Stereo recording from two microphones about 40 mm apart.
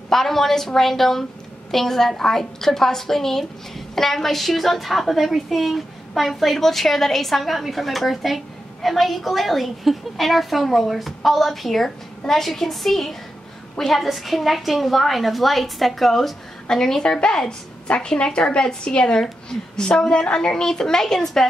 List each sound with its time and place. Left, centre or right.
0.1 s a woman's voice: centre